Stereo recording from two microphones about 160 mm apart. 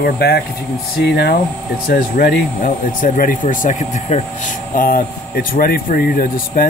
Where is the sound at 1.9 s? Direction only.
65° left (ahead or behind).